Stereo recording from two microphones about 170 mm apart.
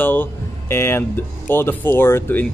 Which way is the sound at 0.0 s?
10° left (ahead or behind).